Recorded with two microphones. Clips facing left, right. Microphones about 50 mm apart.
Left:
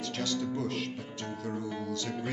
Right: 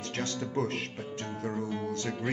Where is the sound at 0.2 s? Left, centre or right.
Right.